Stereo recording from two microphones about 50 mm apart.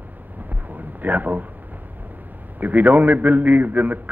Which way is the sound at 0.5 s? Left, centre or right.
Right.